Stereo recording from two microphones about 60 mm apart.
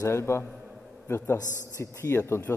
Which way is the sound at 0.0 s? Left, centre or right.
Left.